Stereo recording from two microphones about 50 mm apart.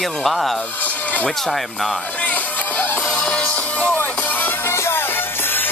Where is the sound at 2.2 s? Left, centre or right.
Left.